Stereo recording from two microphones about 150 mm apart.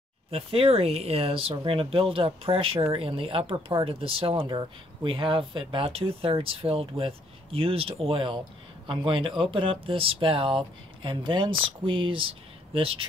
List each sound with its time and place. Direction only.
0.3 s speech: 40° right (ahead or behind)